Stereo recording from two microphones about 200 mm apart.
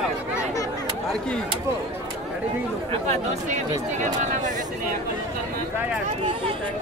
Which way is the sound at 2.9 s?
35° right (ahead or behind).